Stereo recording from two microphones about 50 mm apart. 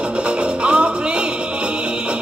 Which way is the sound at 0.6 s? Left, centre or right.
Right.